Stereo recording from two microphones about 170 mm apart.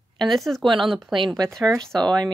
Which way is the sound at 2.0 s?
25° right (ahead or behind).